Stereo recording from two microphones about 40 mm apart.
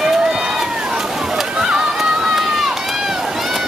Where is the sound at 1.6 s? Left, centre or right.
Centre.